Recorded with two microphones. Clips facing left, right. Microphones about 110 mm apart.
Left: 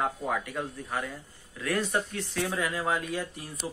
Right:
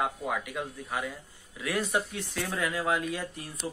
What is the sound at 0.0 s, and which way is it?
Speech, 5° right (ahead or behind).